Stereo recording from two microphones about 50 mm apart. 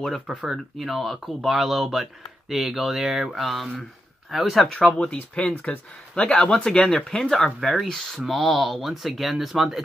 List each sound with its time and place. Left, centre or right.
0.5 s speech: centre
4.7 s speech: left; by 9.8 s centre